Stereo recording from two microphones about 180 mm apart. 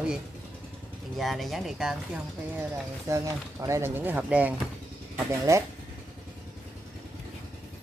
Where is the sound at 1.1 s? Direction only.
Centre (ahead or behind).